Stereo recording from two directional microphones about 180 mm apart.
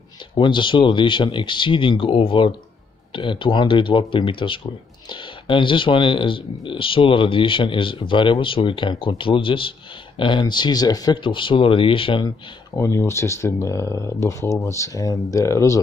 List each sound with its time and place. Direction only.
0.3 s speech: 25° left (ahead or behind)